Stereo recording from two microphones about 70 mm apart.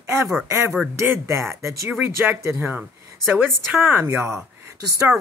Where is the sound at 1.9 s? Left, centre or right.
Right.